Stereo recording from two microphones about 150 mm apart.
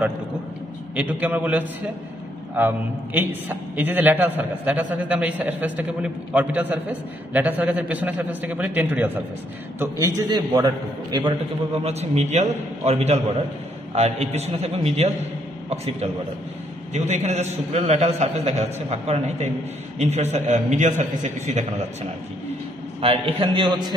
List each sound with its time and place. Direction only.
0.9 s a man's voice: 10° right (ahead or behind); by 11.3 s 25° right (ahead or behind)
11.7 s a man's voice: 45° right (ahead or behind)
22.9 s a man's voice: 40° right (ahead or behind)